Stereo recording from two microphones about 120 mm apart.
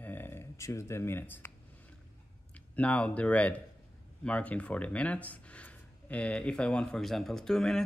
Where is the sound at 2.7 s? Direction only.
10° left (ahead or behind).